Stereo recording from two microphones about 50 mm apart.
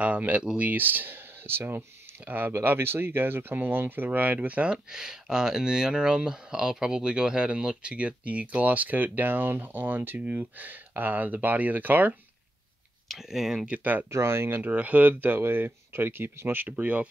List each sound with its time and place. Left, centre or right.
0.0 s speech: right
4.9 s speech: centre; by 12.2 s right
13.1 s speech: centre
13.7 s speech: right
14.1 s speech: right
14.6 s speech: right
16.6 s speech: right